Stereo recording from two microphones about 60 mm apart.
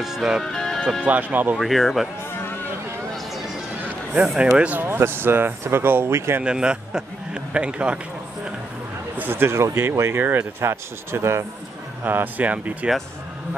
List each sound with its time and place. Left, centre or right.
0.0 s speech: centre
0.4 s speech: centre
1.0 s speech: right
1.6 s speech: centre
4.4 s speech: right
4.8 s speech: right
6.4 s a man's voice: centre
9.2 s speech: right
12.0 s speech: right